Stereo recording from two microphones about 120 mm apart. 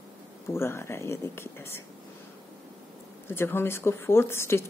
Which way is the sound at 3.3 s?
20° left (ahead or behind).